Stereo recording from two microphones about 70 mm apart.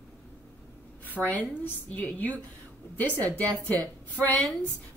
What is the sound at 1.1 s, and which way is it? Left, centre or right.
Speech, left.